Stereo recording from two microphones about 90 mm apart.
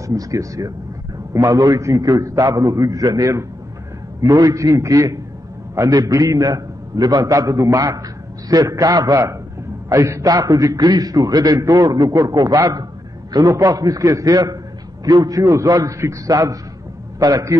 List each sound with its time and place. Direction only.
0.0 s a man's voice: 40° right (ahead or behind)
13.6 s a man's voice: 45° right (ahead or behind)